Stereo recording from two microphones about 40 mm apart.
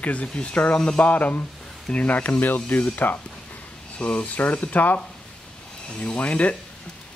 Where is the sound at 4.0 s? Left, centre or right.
Left.